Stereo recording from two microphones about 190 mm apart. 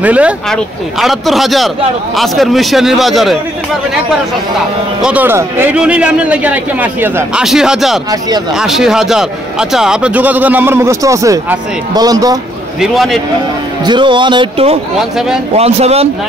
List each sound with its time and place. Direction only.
0.0 s a man's voice: 5° right (ahead or behind)
5.0 s a man's voice: 10° right (ahead or behind)
12.8 s a man's voice: centre (ahead or behind)
13.8 s speech: 25° right (ahead or behind)